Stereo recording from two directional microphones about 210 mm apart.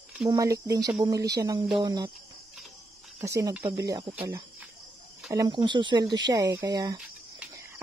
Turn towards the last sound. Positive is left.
turn(degrees=-15)  # may be behind; listen again after turning